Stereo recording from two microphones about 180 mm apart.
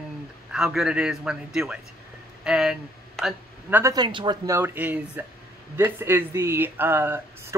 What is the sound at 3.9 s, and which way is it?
Speech, 25° right (ahead or behind).